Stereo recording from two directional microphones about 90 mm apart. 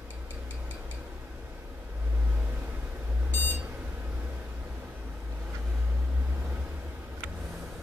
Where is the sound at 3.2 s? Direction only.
20° left (ahead or behind).